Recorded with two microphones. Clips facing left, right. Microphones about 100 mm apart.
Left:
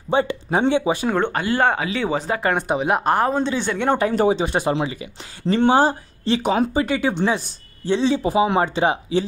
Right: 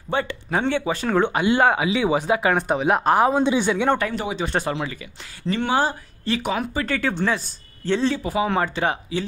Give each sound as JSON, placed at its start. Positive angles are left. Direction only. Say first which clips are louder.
{"t": 0.1, "sound": "speech", "louder": "left 4 dB", "side_deg": 20}
{"t": 1.1, "sound": "speech", "louder": "right 1 dB", "side_deg": -5}
{"t": 1.4, "sound": "speech", "louder": "right 1 dB", "side_deg": -15}
{"t": 2.5, "sound": "speech", "louder": "even", "side_deg": 0}
{"t": 4.1, "sound": "speech", "louder": "left 9 dB", "side_deg": 40}
{"t": 4.5, "sound": "speech", "louder": "left 4 dB", "side_deg": 20}
{"t": 5.5, "sound": "speech", "louder": "left 5 dB", "side_deg": 30}